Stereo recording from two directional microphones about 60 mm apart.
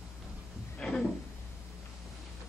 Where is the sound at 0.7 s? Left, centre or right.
Centre.